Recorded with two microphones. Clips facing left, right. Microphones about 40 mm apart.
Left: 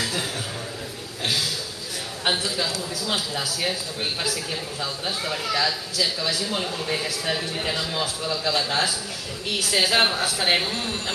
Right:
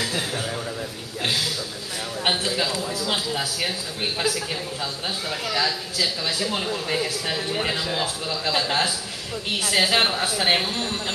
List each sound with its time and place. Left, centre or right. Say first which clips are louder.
2.2 s a man's voice: right 1 dB; centre
5.5 s a man's voice: right 1 dB; centre